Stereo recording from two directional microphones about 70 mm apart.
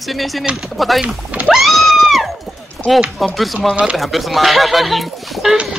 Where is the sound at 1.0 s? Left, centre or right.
Centre.